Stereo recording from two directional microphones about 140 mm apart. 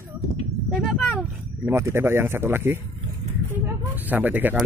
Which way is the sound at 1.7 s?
20° right (ahead or behind).